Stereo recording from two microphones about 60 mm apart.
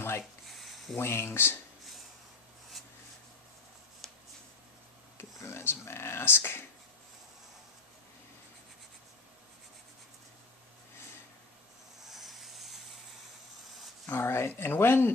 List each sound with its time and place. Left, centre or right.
0.5 s a sound: centre
0.9 s speech: left
4.0 s shuffling cards: centre
5.1 s a sound: left
12.0 s rub: centre
14.1 s speech: left